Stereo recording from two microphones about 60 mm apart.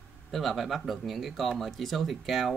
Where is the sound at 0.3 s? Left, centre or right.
Centre.